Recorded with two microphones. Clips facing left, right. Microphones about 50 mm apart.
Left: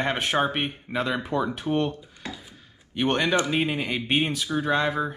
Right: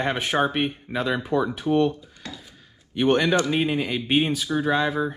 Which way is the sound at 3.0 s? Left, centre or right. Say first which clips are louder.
Right 3 dB; centre.